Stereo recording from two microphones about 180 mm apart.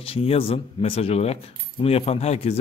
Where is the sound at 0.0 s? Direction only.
30° left (ahead or behind).